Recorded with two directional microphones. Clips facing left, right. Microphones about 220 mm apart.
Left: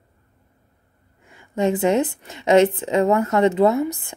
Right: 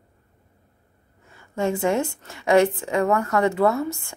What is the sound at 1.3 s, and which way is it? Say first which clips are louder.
Speech: left 4 dB; 15° left (ahead or behind).